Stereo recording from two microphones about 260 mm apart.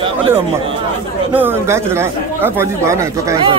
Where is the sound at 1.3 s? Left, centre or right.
Centre.